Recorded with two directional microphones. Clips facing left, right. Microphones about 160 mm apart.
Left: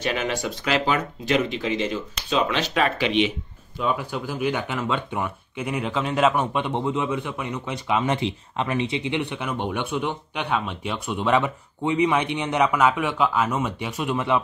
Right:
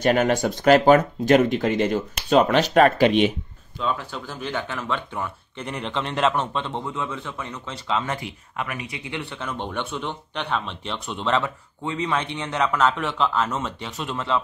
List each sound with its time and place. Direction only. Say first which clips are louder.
0.0 s speech: right 6 dB; 50° right (ahead or behind)
3.8 s speech: left 2 dB; 10° left (ahead or behind)